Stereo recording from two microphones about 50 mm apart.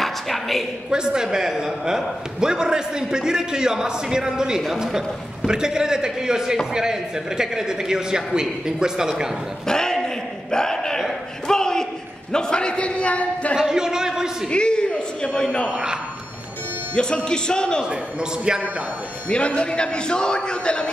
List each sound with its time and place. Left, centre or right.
0.0 s a sound: centre
0.8 s a man's voice: centre
9.7 s a sound: centre; by 13.6 s left
13.6 s a man's voice: centre
14.5 s a man's voice: centre
16.9 s speech: centre
17.8 s a man's voice: centre
19.2 s a man's voice: left